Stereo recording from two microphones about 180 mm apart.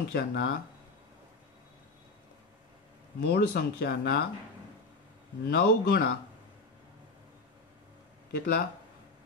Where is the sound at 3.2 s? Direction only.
65° left (ahead or behind).